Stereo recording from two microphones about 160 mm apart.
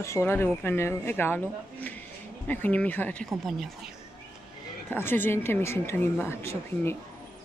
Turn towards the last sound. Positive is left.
turn(degrees=15)  # may be behind; listen again after turning